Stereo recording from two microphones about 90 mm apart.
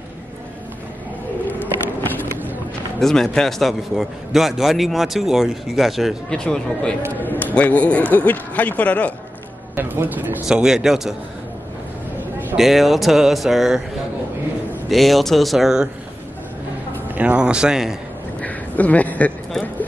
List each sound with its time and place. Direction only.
3.0 s a man's voice: 5° left (ahead or behind)
6.4 s a man's voice: 10° left (ahead or behind)
7.2 s a man's voice: 20° left (ahead or behind)
9.8 s speech: 20° right (ahead or behind)
10.4 s speech: 5° right (ahead or behind)
12.5 s a man's voice: centre (ahead or behind)
14.9 s a man's voice: centre (ahead or behind)
17.1 s speech: 15° right (ahead or behind)
18.4 s a sound: 15° left (ahead or behind)